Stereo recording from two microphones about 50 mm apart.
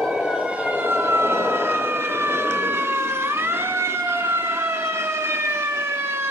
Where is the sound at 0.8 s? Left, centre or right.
Right.